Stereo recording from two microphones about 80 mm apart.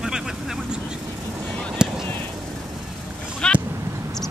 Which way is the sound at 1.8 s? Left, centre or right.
Centre.